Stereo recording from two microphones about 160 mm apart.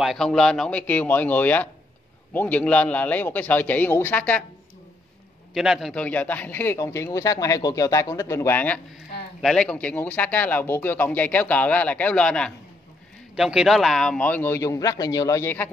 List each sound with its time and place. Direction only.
0.0 s a man's voice: centre (ahead or behind)
5.5 s a man's voice: centre (ahead or behind)